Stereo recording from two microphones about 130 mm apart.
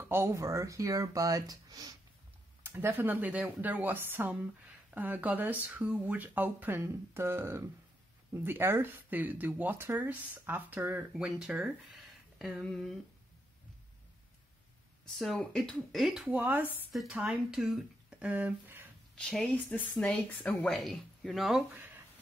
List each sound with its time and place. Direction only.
0.0 s speech: 20° right (ahead or behind)
2.6 s speech: 15° right (ahead or behind); by 13.0 s centre (ahead or behind)
15.1 s speech: centre (ahead or behind)
16.9 s speech: centre (ahead or behind)
19.1 s speech: 5° left (ahead or behind)
21.7 s a sound: 15° right (ahead or behind)